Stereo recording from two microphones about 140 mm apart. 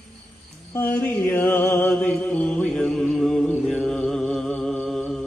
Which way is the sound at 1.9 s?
5° left (ahead or behind).